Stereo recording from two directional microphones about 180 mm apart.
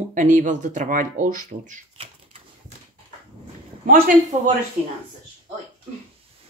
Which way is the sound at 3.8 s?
50° right (ahead or behind).